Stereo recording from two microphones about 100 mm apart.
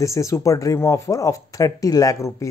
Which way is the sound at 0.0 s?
30° left (ahead or behind).